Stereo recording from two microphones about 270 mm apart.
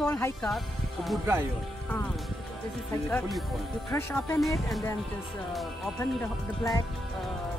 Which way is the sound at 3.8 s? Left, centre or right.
Centre.